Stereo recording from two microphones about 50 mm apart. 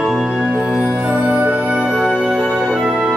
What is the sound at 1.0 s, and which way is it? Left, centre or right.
Music, right.